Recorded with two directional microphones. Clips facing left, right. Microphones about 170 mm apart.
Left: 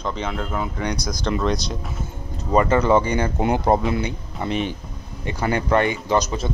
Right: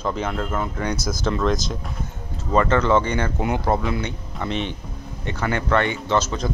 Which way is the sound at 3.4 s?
30° left (ahead or behind).